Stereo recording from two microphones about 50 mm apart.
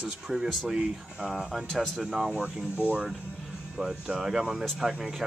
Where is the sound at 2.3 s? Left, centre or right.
Right.